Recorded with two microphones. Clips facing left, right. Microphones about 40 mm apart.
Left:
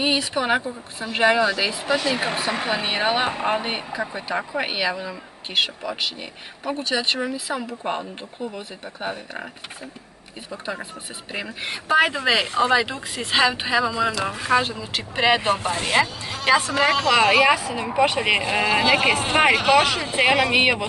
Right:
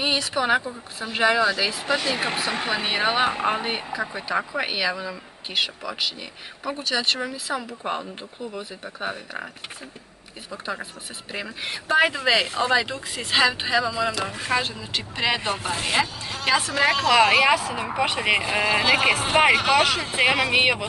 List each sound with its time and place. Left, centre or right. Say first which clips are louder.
0.0 s speech: left 1 dB; centre
10.5 s speech: left 1 dB; centre
15.1 s speech: left 6 dB; left
15.6 s speech: left 3 dB; centre
19.9 s speech: even; centre
20.2 s speech: left 2 dB; centre